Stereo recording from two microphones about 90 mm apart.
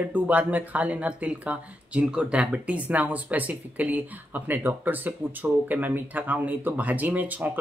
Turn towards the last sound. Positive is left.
turn(degrees=-15)  # may be behind; listen again after turning